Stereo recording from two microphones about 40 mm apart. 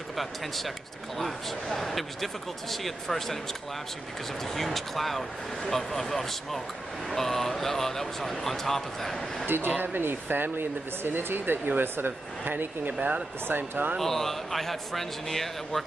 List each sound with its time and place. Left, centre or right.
1.1 s speech: centre
4.6 s speech: centre
9.5 s speech: right
13.9 s speech: centre